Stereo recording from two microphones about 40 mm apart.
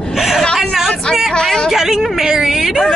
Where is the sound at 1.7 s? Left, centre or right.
Centre.